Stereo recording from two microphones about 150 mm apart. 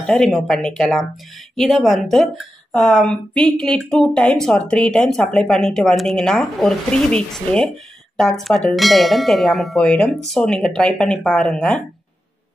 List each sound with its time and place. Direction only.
0.0 s speech: centre (ahead or behind)